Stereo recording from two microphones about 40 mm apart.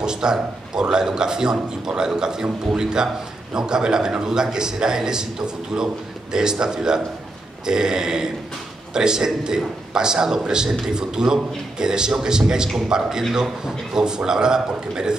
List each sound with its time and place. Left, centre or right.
0.0 s a man's voice: centre
6.3 s a man's voice: centre